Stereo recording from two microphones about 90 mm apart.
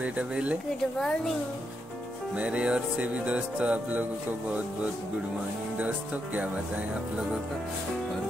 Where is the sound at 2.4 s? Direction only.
10° right (ahead or behind).